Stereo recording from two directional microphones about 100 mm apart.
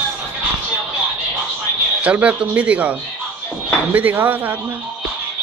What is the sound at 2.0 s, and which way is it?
Speech, 15° right (ahead or behind).